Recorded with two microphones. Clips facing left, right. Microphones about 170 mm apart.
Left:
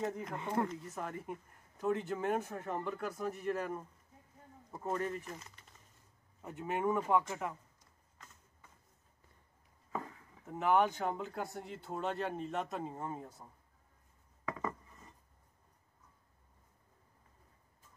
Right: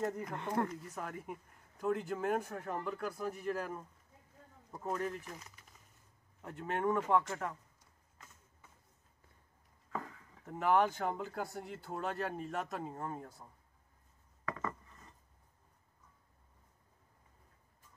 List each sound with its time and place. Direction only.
0.0 s speech: centre (ahead or behind)
10.4 s speech: centre (ahead or behind)
14.4 s a sound: 10° left (ahead or behind)